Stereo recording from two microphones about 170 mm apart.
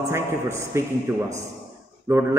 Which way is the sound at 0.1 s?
15° right (ahead or behind).